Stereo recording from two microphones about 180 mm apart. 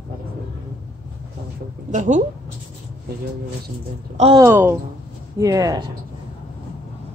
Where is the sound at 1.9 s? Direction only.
40° right (ahead or behind).